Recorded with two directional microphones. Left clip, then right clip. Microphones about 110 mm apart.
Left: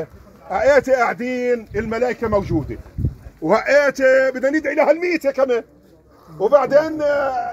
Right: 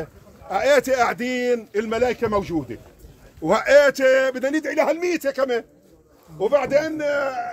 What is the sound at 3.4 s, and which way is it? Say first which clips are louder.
A man's voice: even; 20° right (ahead or behind).